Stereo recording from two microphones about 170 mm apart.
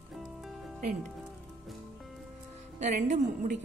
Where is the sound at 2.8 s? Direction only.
45° right (ahead or behind).